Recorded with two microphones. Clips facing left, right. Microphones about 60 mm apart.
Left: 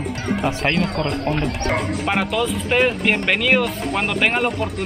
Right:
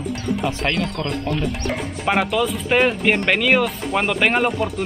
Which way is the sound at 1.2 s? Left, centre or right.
Left.